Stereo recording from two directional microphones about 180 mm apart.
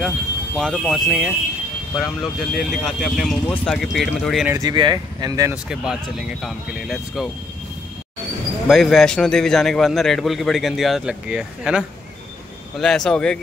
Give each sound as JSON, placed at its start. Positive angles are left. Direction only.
{"t": 0.6, "sound": "a man's voice", "side_deg": 0}
{"t": 4.5, "sound": "speech", "side_deg": -20}
{"t": 5.5, "sound": "a man's voice", "side_deg": -5}
{"t": 8.6, "sound": "a man's voice", "side_deg": 0}